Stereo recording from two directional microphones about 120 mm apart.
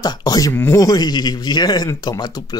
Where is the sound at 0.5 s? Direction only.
20° left (ahead or behind).